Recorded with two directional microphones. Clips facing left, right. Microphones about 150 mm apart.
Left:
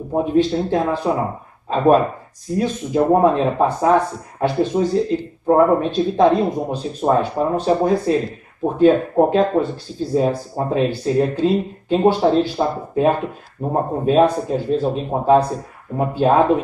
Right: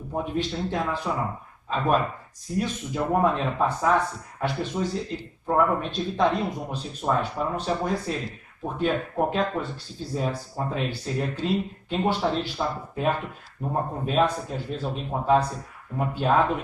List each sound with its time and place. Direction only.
0.1 s speech: 35° left (ahead or behind)